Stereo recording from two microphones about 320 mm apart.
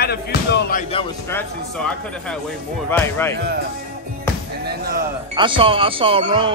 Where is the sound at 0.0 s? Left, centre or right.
Left.